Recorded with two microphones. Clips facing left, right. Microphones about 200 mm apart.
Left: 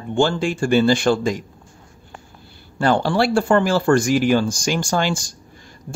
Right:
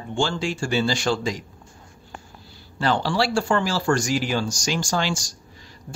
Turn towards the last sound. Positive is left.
turn(degrees=55)  # may be behind; listen again after turning